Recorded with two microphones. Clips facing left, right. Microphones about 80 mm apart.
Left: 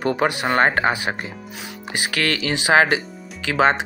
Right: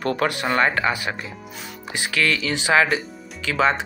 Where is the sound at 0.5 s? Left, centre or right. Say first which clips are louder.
Left 3 dB; left.